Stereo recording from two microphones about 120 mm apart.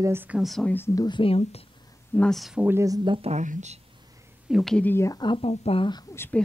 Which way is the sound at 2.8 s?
30° right (ahead or behind).